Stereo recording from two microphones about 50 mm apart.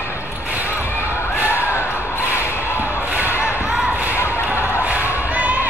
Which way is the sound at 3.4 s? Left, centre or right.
Centre.